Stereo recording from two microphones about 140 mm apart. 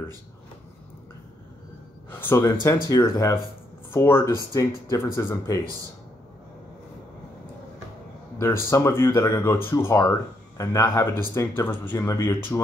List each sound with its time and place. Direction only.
2.0 s speech: 15° left (ahead or behind)
8.4 s speech: 20° left (ahead or behind)